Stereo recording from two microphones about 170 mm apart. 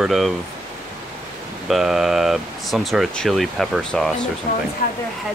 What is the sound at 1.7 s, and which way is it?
Speech, centre (ahead or behind).